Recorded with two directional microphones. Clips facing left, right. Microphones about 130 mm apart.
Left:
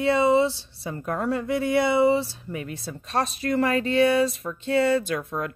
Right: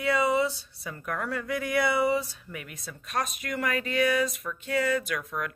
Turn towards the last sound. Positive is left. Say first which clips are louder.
# left 5 dB
turn(degrees=30)  # may be behind; listen again after turning